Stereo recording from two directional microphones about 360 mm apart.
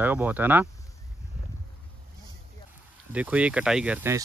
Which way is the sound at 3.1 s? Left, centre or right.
Centre.